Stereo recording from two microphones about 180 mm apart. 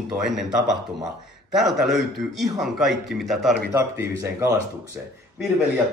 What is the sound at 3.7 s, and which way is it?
Speech, 15° right (ahead or behind).